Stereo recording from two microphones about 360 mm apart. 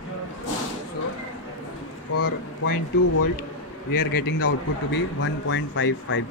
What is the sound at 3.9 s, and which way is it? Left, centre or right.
Speech, left.